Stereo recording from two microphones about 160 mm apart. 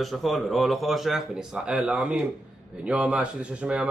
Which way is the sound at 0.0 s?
Centre (ahead or behind).